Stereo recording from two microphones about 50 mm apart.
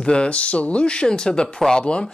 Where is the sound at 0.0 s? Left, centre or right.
Centre.